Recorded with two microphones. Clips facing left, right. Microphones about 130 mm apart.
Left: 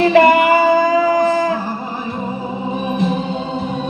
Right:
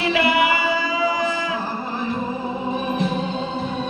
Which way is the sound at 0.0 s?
45° left (ahead or behind).